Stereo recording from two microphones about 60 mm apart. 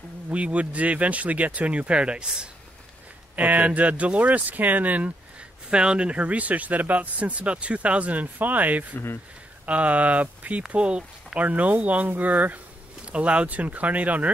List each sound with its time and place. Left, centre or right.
0.3 s speech: right
3.3 s speech: right